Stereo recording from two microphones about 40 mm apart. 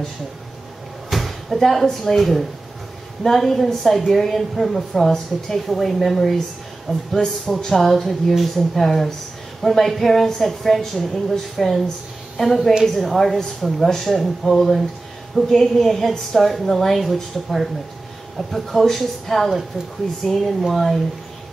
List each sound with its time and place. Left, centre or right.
1.1 s a woman's voice: centre